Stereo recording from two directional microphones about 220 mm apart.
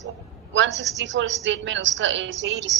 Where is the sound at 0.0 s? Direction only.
55° right (ahead or behind).